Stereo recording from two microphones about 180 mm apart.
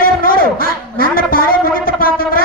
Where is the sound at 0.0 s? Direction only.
55° left (ahead or behind).